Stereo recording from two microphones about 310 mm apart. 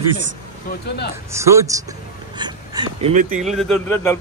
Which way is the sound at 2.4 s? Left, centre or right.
Centre.